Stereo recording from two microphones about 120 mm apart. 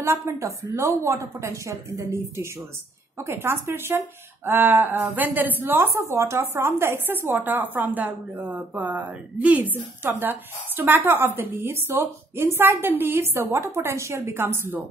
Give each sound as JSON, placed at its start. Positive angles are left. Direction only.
{"t": 0.0, "sound": "a woman's voice", "side_deg": -25}